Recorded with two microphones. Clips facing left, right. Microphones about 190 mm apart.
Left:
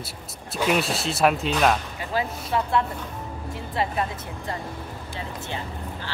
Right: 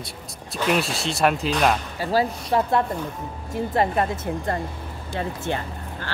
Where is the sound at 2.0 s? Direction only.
40° right (ahead or behind).